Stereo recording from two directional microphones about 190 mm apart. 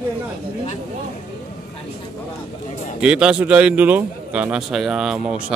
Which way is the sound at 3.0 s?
5° right (ahead or behind).